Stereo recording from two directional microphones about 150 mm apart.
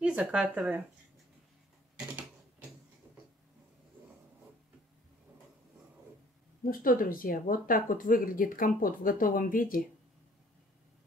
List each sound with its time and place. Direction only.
0.0 s speech: 5° right (ahead or behind)
6.6 s speech: 70° left (ahead or behind)